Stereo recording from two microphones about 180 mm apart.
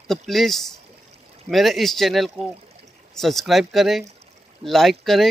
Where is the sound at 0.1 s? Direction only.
Centre (ahead or behind).